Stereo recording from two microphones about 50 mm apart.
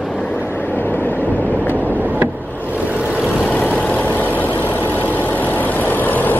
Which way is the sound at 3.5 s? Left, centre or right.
Left.